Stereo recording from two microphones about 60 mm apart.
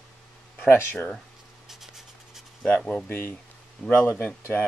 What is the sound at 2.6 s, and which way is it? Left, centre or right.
Speech, centre.